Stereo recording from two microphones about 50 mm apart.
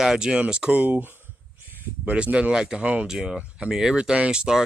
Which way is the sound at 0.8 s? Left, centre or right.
Right.